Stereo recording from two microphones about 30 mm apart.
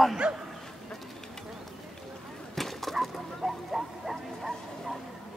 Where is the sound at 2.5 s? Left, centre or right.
Centre.